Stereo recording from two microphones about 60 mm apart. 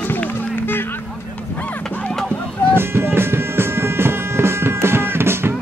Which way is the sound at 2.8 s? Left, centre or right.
Right.